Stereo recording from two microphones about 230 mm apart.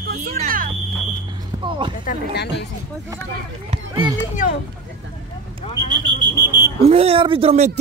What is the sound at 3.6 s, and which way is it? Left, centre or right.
Speech, right.